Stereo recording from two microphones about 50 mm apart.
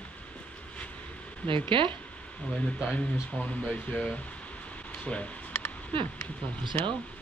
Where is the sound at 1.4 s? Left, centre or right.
Left.